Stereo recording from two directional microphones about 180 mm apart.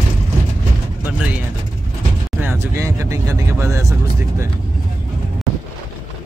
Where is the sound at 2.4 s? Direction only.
15° right (ahead or behind).